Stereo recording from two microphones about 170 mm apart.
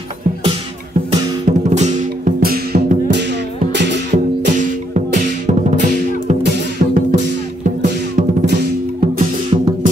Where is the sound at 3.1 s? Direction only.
90° right.